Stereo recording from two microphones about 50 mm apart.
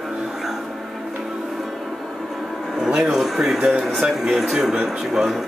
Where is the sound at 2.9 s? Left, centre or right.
Centre.